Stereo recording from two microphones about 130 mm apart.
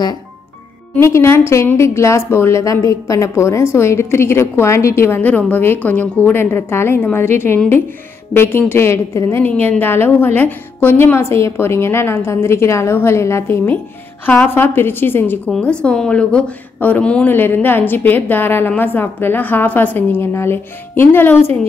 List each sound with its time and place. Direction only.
0.9 s a woman's voice: 20° left (ahead or behind)